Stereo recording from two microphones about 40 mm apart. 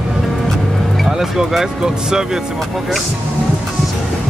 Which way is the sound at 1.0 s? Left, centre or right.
Centre.